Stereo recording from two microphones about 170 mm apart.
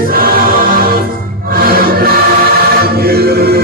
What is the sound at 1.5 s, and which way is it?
Music, 60° right (ahead or behind).